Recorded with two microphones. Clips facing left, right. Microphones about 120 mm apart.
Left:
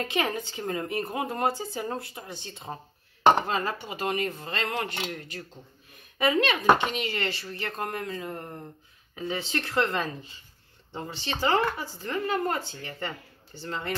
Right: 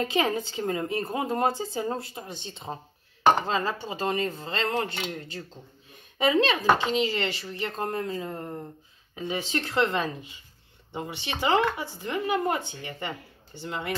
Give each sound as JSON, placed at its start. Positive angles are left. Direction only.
{"t": 0.0, "sound": "a woman's voice", "side_deg": -25}